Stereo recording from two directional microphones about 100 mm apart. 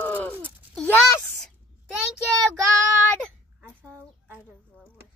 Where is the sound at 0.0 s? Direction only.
20° left (ahead or behind).